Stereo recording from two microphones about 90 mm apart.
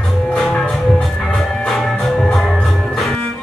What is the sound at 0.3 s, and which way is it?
Music, 10° left (ahead or behind).